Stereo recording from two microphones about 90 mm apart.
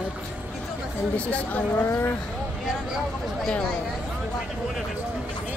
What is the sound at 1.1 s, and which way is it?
Speech, 15° left (ahead or behind).